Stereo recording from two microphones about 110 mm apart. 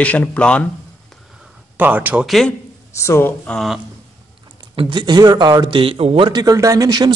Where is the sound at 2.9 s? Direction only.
25° left (ahead or behind).